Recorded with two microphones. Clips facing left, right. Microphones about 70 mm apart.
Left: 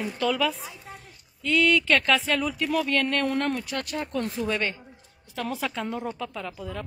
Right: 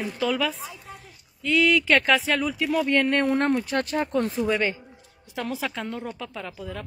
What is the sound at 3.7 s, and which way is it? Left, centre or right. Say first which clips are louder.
Speech: right 6 dB; right.